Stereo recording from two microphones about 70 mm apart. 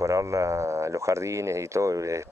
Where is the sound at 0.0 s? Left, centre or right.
Right.